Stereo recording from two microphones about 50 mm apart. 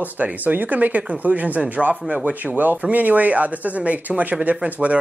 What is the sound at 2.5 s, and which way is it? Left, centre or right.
Speech, right.